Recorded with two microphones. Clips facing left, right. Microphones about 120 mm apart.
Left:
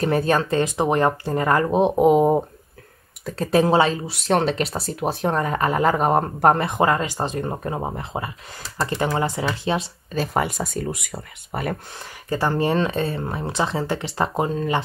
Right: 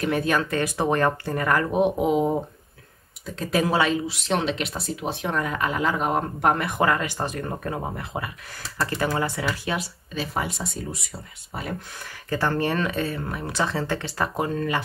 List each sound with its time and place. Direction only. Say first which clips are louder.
0.0 s speech: left 3 dB; 35° left (ahead or behind)
2.0 s speech: left 6 dB; 45° left (ahead or behind)
3.3 s speech: left 5 dB; 30° left (ahead or behind)
4.1 s speech: left 5 dB; 45° left (ahead or behind)
6.7 s speech: left 3 dB; 25° left (ahead or behind)
10.1 s speech: left 6 dB; 55° left (ahead or behind)
12.0 s speech: left 2 dB; 20° left (ahead or behind)